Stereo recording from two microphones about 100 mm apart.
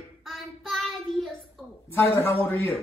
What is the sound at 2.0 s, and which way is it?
Speech, 30° left (ahead or behind).